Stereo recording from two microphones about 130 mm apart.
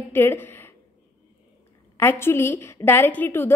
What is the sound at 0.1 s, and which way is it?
Speech, 15° left (ahead or behind).